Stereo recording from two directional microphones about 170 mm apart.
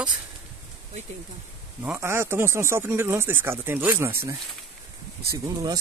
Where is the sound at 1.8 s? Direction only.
10° right (ahead or behind).